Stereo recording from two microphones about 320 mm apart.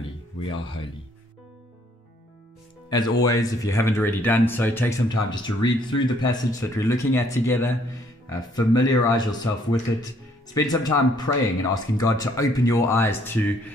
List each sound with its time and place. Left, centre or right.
0.5 s speech: centre
2.9 s speech: centre